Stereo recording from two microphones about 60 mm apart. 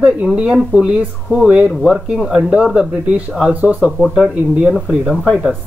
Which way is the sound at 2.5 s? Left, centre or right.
Centre.